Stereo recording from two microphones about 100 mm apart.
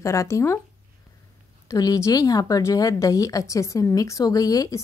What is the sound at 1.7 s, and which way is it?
A woman's voice, 35° left (ahead or behind).